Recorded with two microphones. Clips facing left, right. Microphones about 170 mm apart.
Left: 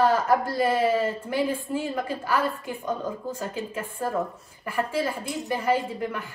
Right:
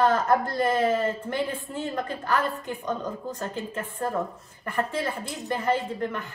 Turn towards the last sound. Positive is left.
turn(degrees=0)  # may be behind; listen again after turning